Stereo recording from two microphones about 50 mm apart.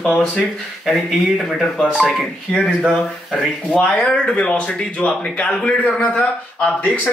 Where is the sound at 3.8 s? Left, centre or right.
Left.